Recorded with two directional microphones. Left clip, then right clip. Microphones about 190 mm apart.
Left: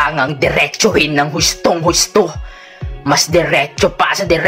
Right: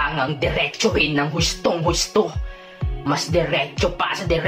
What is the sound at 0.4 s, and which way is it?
Speech, 30° left (ahead or behind).